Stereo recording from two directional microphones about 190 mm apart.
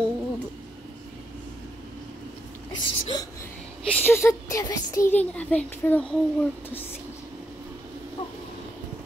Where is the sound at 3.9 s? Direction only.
10° left (ahead or behind).